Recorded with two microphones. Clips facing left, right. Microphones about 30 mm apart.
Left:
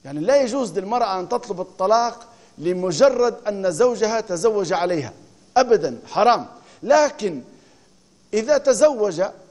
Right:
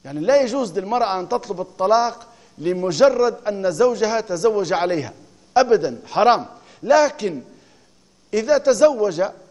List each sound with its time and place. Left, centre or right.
0.0 s a man's voice: centre